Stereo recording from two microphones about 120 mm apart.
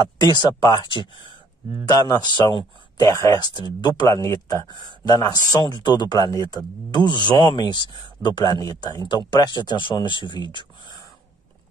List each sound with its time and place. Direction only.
0.0 s speech: 35° left (ahead or behind)
0.6 s speech: 25° left (ahead or behind)
0.8 s speech: 40° left (ahead or behind); by 3.3 s 25° left (ahead or behind)
3.3 s speech: 35° left (ahead or behind)